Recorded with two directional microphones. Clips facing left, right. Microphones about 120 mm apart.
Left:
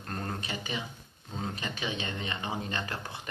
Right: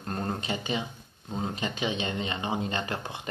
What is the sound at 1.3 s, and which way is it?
Speech, 20° right (ahead or behind).